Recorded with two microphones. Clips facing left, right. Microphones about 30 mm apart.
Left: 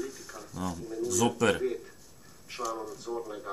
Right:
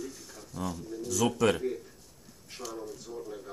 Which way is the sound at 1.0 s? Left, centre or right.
Centre.